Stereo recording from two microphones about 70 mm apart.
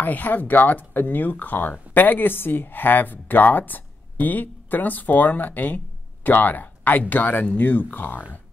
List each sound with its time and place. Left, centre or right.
0.0 s speech: left